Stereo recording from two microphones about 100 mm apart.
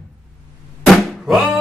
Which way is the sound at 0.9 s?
Centre (ahead or behind).